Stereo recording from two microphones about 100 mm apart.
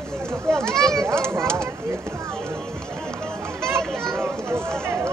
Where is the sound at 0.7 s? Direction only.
5° left (ahead or behind).